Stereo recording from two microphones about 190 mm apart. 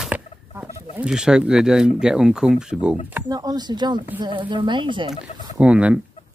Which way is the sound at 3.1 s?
20° right (ahead or behind).